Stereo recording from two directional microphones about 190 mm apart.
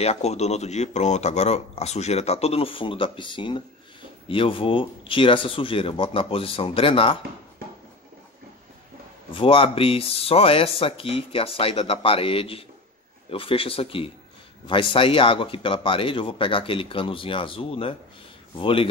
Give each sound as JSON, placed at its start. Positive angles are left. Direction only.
{"t": 0.0, "sound": "speech", "side_deg": 35}
{"t": 9.3, "sound": "speech", "side_deg": 30}